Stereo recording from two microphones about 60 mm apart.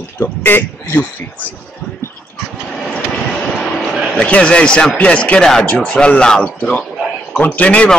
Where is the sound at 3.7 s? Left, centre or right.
Centre.